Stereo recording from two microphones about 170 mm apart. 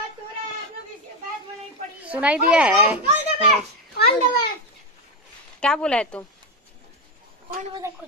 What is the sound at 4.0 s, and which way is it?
Speech, 65° left (ahead or behind).